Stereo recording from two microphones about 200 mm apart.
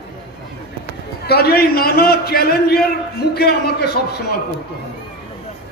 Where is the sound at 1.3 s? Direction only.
50° left (ahead or behind).